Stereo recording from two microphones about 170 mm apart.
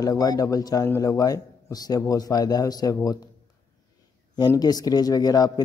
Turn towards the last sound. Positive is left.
turn(degrees=20)  # may be behind; listen again after turning